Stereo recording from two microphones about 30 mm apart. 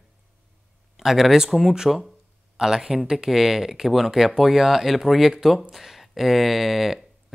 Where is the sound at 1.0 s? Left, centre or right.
Centre.